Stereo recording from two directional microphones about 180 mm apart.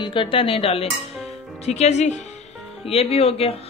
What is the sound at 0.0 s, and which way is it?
A woman's voice, 30° left (ahead or behind).